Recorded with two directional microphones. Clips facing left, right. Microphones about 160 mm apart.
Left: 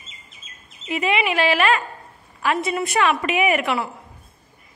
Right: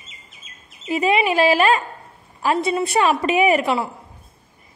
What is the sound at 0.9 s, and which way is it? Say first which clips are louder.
A man's voice: right 3 dB; 35° right (ahead or behind).